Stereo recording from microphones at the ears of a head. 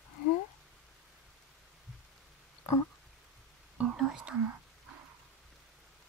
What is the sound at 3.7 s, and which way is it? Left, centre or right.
Whispering, right.